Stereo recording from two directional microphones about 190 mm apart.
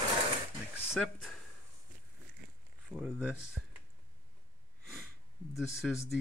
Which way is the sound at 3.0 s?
5° right (ahead or behind).